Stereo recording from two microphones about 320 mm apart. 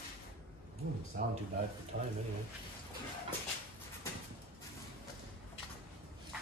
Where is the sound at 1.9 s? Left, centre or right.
Right.